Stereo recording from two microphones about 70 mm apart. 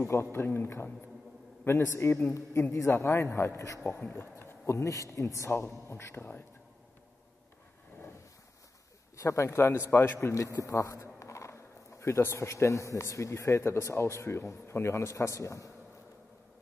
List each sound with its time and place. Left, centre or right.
0.0 s speech: left
3.8 s speech: left
9.1 s speech: left
10.0 s speech: left
10.3 s speech: left